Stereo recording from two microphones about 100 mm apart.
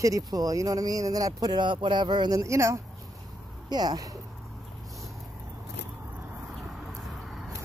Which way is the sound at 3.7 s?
45° right (ahead or behind).